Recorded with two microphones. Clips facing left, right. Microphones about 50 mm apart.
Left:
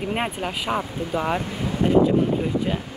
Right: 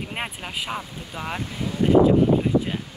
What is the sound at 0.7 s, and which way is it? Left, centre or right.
Speech, centre.